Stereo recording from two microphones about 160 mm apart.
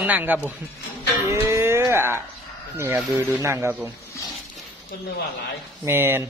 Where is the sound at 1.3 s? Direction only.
15° right (ahead or behind).